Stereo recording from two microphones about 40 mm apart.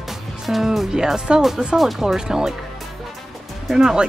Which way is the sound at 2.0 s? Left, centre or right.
Centre.